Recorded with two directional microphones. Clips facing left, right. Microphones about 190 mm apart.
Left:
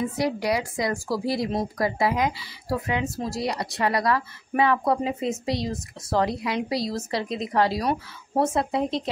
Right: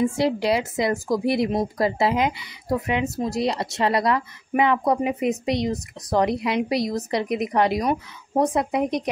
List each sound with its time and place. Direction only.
0.0 s a woman's voice: 25° right (ahead or behind)